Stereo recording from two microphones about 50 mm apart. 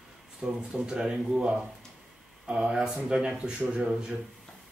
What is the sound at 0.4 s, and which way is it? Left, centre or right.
Speech, centre.